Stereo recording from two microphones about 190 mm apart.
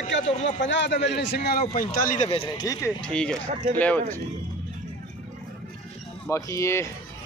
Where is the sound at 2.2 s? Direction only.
25° left (ahead or behind).